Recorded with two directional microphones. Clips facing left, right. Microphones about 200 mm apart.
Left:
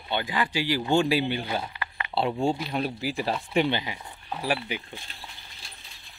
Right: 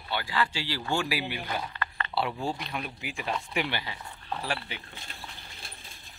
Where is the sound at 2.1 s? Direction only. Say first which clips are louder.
Left 6 dB; 25° left (ahead or behind).